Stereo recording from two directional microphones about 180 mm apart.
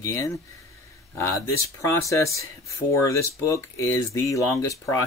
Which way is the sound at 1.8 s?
15° left (ahead or behind).